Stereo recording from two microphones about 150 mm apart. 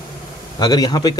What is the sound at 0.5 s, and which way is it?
Speech, 25° left (ahead or behind).